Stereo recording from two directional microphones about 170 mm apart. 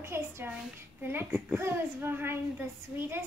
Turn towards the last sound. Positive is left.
turn(degrees=-15)  # may be behind; listen again after turning